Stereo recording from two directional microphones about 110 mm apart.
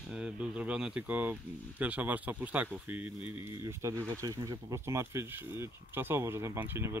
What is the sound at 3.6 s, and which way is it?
Speech, 25° right (ahead or behind).